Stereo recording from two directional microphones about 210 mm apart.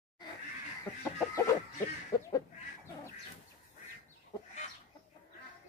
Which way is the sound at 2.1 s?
20° left (ahead or behind).